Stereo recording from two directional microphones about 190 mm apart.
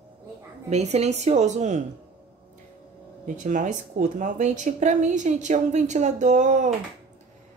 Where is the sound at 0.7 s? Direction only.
35° right (ahead or behind).